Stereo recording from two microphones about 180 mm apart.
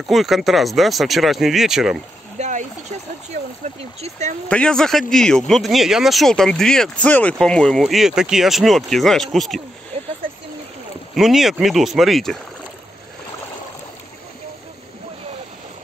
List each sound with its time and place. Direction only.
0.1 s speech: centre (ahead or behind)
2.3 s a sound: 40° right (ahead or behind)
3.3 s speech: 40° right (ahead or behind)
4.5 s speech: 5° left (ahead or behind)
11.1 s speech: centre (ahead or behind)